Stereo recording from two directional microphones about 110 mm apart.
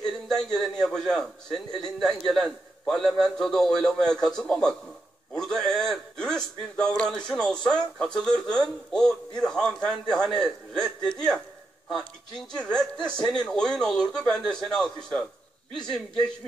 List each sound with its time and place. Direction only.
0.0 s speech: 5° left (ahead or behind)